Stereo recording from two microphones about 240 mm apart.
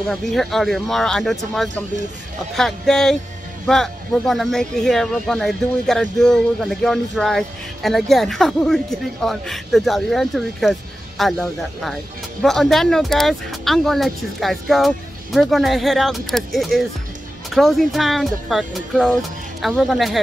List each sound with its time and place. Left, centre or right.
0.1 s speech: centre